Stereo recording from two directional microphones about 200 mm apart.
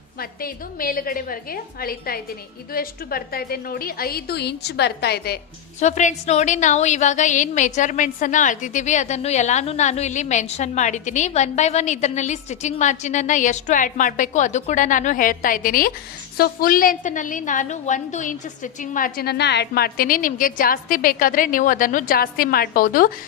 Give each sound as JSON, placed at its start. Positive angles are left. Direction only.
{"t": 0.2, "sound": "a woman's voice", "side_deg": 45}
{"t": 5.8, "sound": "a woman's voice", "side_deg": 35}